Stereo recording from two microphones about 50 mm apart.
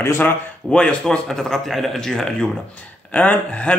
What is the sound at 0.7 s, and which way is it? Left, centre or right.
Speech, left.